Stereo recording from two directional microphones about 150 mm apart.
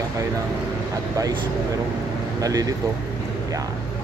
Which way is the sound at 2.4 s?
25° right (ahead or behind).